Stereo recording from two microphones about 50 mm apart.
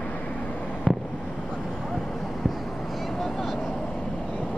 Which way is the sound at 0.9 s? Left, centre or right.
Centre.